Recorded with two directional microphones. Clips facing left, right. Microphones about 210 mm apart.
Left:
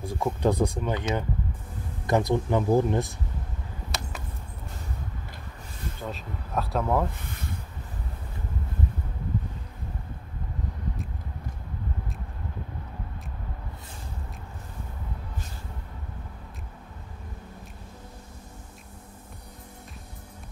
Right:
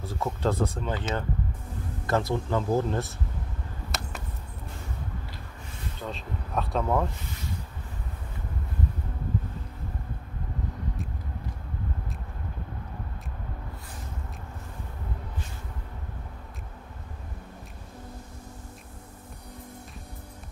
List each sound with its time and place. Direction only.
0.0 s speech: 15° left (ahead or behind)
2.0 s speech: 15° left (ahead or behind)
3.9 s a sound: centre (ahead or behind)
6.0 s speech: centre (ahead or behind)